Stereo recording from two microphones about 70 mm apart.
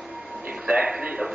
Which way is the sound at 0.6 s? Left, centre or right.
Centre.